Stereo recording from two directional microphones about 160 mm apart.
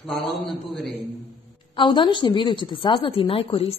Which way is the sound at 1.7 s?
30° left (ahead or behind).